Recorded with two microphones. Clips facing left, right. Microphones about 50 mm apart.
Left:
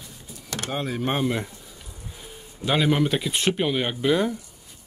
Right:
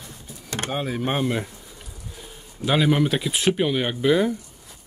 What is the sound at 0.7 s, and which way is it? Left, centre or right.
Speech, centre.